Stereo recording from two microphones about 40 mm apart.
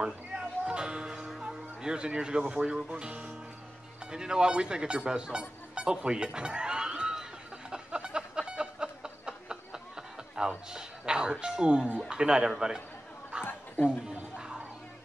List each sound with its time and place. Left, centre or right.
0.0 s music: right
2.4 s speech: right
7.7 s a sound: right
10.7 s speech: centre
13.3 s chuckle: right
14.3 s music: right